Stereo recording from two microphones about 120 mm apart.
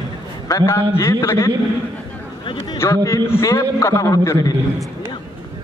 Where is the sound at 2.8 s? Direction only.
25° left (ahead or behind).